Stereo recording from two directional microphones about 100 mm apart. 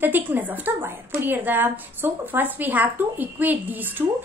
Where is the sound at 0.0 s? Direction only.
20° right (ahead or behind).